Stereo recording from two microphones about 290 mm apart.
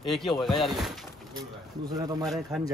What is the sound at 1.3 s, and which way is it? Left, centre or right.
Speech, centre.